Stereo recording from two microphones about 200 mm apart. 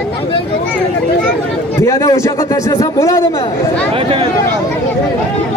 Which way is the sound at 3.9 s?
30° right (ahead or behind).